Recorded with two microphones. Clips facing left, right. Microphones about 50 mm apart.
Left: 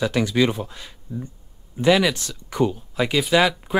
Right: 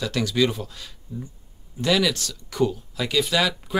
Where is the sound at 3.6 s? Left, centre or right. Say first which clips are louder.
Left 3 dB; left.